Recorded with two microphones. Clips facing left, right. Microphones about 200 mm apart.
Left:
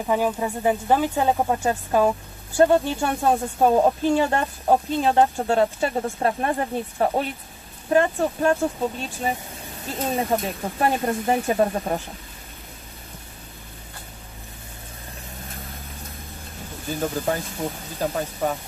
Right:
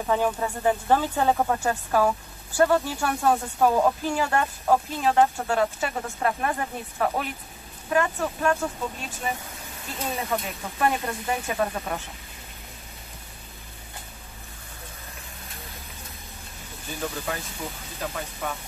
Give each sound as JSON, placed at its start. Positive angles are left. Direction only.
{"t": 0.0, "sound": "speech", "side_deg": 15}
{"t": 9.8, "sound": "speech", "side_deg": 30}
{"t": 17.0, "sound": "speech", "side_deg": 45}
{"t": 17.9, "sound": "speech", "side_deg": 30}